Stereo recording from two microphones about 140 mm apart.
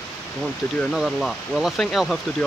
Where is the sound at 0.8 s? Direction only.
Centre (ahead or behind).